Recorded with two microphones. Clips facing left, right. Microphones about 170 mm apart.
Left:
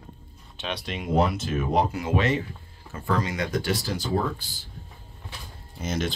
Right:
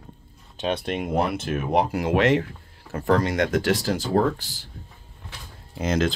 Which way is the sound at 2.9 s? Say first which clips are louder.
Right 6 dB; 70° right (ahead or behind).